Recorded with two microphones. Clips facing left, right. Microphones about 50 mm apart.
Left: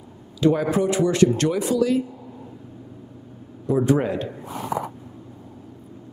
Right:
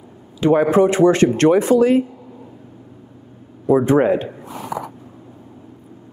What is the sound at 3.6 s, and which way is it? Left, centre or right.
Speech, right.